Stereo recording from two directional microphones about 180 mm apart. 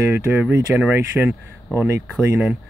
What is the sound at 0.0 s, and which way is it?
Speech, 15° right (ahead or behind).